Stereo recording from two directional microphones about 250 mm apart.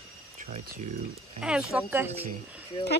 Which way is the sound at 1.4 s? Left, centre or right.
Centre.